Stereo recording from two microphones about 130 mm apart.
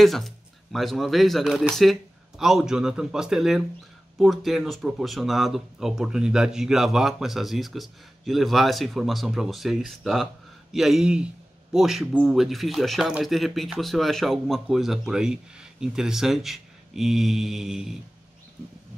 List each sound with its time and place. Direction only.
0.0 s speech: centre (ahead or behind)